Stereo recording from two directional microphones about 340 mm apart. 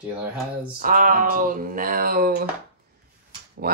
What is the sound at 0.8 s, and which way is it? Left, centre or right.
Speech, right.